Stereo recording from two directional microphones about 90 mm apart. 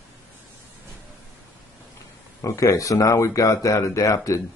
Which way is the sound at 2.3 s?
35° left (ahead or behind).